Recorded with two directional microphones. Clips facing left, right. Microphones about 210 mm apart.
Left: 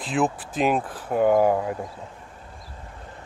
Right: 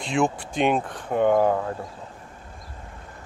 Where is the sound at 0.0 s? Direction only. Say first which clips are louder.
Right 1 dB; centre (ahead or behind).